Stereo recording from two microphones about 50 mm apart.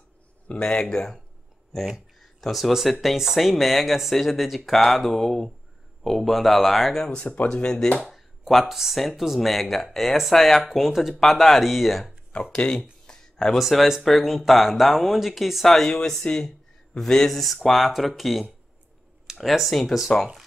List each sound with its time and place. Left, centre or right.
0.5 s speech: centre
7.1 s speech: centre
8.1 s speech: centre
10.6 s speech: centre
12.5 s speech: centre
13.0 s a sound: centre
13.6 s speech: centre